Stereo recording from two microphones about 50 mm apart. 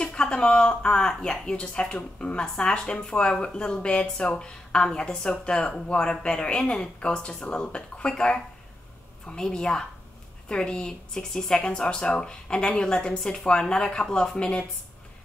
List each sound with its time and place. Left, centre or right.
0.0 s a woman's voice: centre